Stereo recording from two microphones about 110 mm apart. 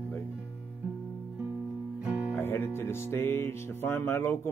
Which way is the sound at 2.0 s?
10° right (ahead or behind).